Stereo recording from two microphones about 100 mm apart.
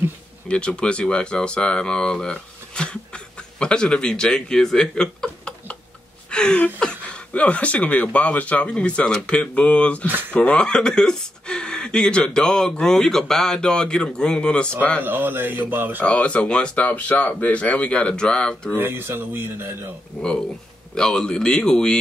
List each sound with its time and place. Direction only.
0.5 s a man's voice: 10° left (ahead or behind)
15.0 s speech: 20° right (ahead or behind)
16.0 s speech: 10° left (ahead or behind)
18.8 s speech: 20° right (ahead or behind)
20.2 s speech: 15° left (ahead or behind)